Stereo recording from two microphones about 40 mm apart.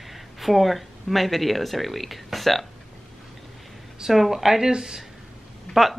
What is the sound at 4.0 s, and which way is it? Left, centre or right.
A woman's voice, centre.